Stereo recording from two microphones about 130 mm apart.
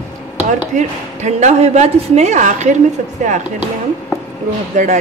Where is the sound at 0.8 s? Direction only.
65° right (ahead or behind).